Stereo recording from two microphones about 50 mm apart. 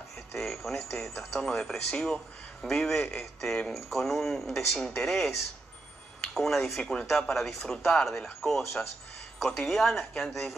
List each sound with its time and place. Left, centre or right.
0.3 s speech: centre
6.8 s a woman's voice: centre
7.1 s a woman's voice: centre